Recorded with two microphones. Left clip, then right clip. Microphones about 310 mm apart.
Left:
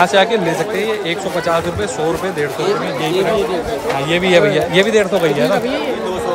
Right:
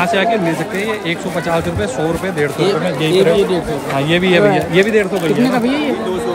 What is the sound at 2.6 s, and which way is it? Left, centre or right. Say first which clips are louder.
Speech: right 2 dB; right.